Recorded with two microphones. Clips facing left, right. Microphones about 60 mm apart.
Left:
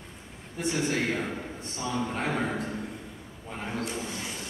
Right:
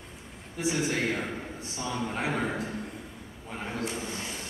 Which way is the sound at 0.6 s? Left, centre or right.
Centre.